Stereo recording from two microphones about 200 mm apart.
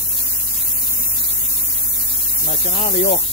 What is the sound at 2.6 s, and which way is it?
Speech, 35° left (ahead or behind).